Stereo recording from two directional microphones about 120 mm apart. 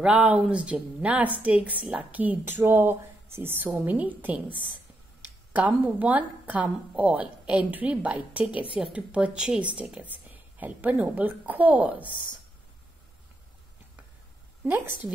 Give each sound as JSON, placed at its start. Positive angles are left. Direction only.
{"t": 0.0, "sound": "a woman's voice", "side_deg": -10}
{"t": 14.6, "sound": "a woman's voice", "side_deg": -15}